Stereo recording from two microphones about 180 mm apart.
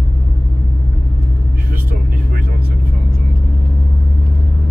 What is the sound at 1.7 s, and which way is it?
Vehicle, 55° right (ahead or behind).